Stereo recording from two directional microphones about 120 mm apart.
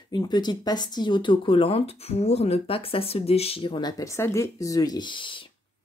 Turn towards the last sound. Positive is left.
turn(degrees=45)  # may be behind; listen again after turning